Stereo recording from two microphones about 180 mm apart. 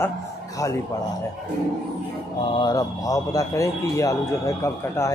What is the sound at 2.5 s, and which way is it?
Speech, 20° left (ahead or behind).